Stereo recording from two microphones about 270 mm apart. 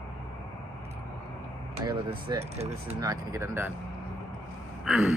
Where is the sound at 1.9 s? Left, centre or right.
Centre.